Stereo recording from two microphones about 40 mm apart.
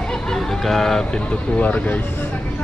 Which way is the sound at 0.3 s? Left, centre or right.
Centre.